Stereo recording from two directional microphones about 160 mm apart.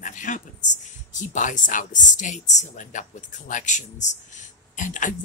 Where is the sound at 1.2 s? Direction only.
50° left (ahead or behind).